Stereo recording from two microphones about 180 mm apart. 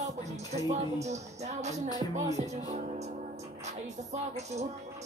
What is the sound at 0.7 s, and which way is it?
Music, 40° right (ahead or behind).